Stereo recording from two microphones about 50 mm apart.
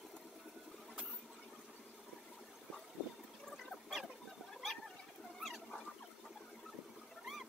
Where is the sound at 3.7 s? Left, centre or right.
Centre.